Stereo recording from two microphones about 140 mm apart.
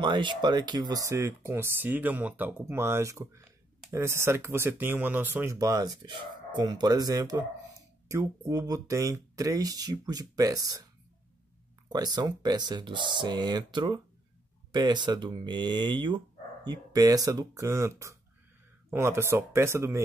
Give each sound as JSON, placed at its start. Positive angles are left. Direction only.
{"t": 0.0, "sound": "speech", "side_deg": -35}
{"t": 11.9, "sound": "speech", "side_deg": -30}